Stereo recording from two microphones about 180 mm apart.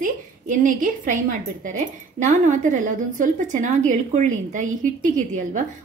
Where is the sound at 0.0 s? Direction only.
45° right (ahead or behind).